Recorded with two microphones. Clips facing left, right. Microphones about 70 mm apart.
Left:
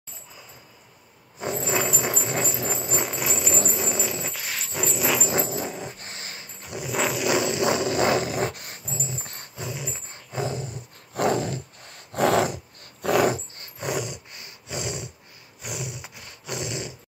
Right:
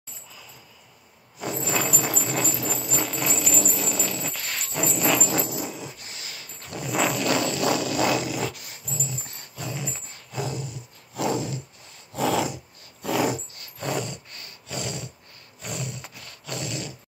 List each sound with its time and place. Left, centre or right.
1.4 s vehicle: left
3.5 s a sound: left; by 5.3 s centre
5.3 s dog: left
6.6 s a sound: centre
6.9 s a sound: centre
7.2 s dog: centre; by 8.7 s left
8.8 s dog: left
9.2 s dog: left
9.6 s dog: centre
10.0 s dog: left
13.7 s a sound: centre
15.6 s roar: centre